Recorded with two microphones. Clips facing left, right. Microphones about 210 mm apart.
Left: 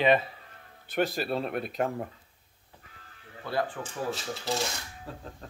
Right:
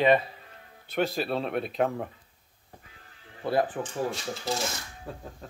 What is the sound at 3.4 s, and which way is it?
Speech, 25° right (ahead or behind).